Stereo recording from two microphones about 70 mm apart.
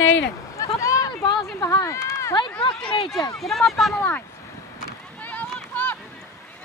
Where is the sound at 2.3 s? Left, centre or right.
Left.